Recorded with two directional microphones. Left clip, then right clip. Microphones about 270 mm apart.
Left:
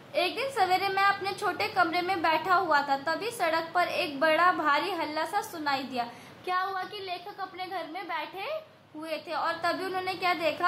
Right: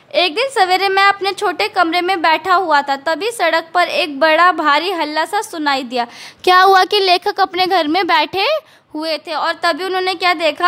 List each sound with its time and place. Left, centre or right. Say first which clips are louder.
0.1 s a woman's voice: right 14 dB; right